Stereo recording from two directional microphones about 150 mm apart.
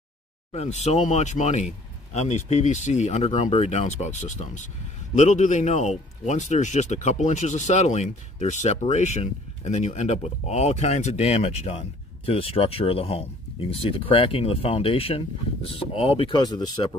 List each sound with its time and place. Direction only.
0.5 s a man's voice: 45° left (ahead or behind); by 16.9 s 30° left (ahead or behind)